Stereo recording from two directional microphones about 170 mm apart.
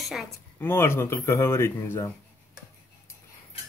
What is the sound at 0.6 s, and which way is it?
Speech, 15° left (ahead or behind).